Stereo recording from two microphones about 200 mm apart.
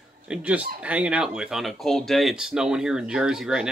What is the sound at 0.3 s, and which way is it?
Speech, 5° right (ahead or behind).